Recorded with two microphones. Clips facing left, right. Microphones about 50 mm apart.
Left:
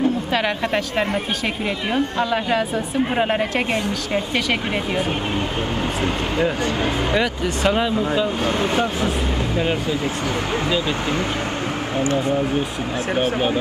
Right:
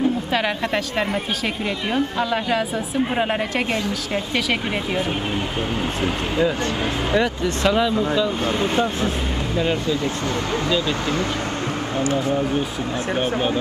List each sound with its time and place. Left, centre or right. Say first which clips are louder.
1.9 s speech: left 1 dB; centre
7.6 s speech: right 1 dB; centre
7.9 s speech: even; centre
9.6 s speech: right 2 dB; centre
13.1 s speech: left 2 dB; centre